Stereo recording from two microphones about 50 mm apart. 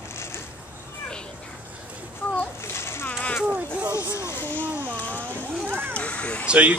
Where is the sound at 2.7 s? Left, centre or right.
Left.